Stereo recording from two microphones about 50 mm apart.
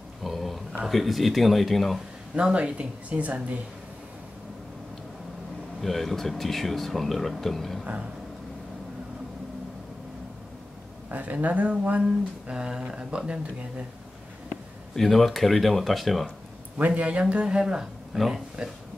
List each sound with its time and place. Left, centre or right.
0.2 s a sound: centre
0.8 s speech: centre
2.3 s speech: right
5.8 s speech: centre
11.1 s speech: right
12.0 s speech: centre
14.5 s speech: centre
16.7 s speech: right; by 18.4 s centre